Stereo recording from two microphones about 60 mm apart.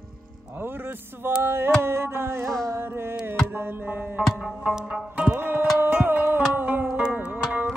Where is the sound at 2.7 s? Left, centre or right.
Right.